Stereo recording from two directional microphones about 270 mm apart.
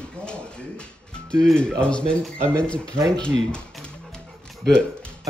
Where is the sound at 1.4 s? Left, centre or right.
Centre.